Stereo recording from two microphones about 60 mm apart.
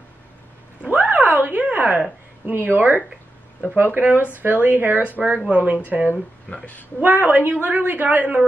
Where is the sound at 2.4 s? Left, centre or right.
Right.